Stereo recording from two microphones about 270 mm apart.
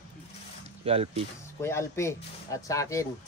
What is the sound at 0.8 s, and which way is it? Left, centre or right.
Speech, right.